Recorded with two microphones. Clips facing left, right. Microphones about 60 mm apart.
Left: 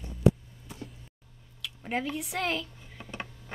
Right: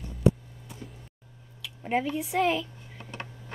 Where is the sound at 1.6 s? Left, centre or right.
Centre.